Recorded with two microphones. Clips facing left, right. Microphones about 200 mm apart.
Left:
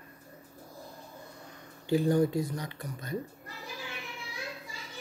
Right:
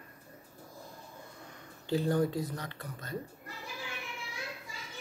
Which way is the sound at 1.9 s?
10° left (ahead or behind).